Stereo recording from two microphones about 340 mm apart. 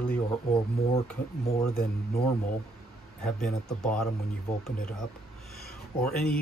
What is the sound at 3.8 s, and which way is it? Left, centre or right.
Speech, centre.